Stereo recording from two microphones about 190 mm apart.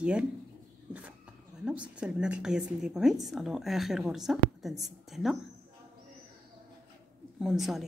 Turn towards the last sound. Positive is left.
turn(degrees=0)  # may be behind; listen again after turning